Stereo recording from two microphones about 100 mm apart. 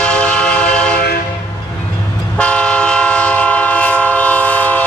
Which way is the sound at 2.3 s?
10° left (ahead or behind).